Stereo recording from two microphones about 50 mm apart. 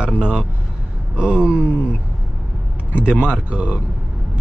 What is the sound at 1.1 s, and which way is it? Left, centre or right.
Speech, right.